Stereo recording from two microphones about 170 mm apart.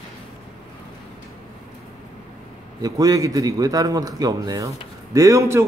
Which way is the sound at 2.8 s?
20° right (ahead or behind).